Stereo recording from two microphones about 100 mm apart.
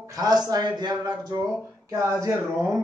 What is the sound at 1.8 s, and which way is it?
Speech, 30° right (ahead or behind).